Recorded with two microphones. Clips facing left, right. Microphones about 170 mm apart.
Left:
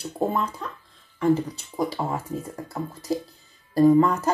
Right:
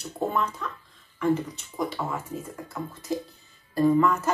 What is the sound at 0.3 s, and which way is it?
Speech, 35° left (ahead or behind).